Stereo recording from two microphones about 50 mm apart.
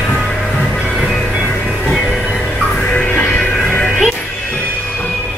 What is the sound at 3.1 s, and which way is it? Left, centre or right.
Music, left.